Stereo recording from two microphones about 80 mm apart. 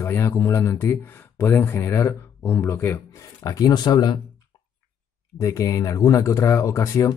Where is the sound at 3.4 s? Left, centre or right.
Left.